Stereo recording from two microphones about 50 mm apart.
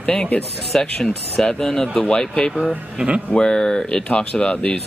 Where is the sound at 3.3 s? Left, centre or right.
Centre.